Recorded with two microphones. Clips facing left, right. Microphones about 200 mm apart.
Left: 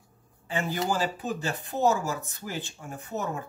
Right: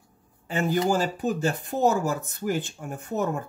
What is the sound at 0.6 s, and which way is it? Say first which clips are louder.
Speech: right 5 dB; 45° right (ahead or behind).